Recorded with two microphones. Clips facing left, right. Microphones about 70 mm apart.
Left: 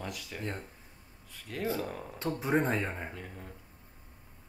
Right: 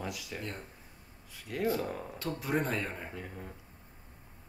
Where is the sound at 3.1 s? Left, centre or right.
Centre.